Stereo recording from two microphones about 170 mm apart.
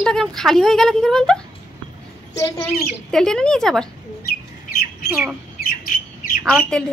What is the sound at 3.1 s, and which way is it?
Speech, 5° left (ahead or behind).